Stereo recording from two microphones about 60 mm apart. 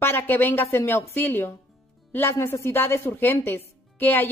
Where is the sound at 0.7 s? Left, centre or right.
Left.